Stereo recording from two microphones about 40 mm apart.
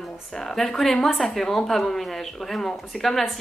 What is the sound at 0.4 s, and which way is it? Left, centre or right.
Speech, centre.